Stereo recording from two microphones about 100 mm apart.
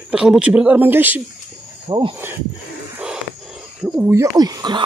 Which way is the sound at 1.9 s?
50° right (ahead or behind).